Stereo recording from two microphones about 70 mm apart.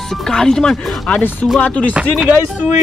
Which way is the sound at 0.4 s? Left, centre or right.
Centre.